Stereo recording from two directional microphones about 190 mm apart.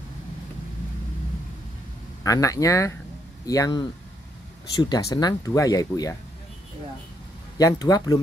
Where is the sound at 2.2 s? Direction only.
15° left (ahead or behind).